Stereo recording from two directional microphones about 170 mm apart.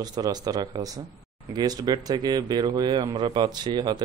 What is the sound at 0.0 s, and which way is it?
Speech, 25° right (ahead or behind).